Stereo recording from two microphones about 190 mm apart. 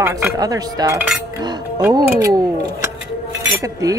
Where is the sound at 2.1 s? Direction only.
20° right (ahead or behind).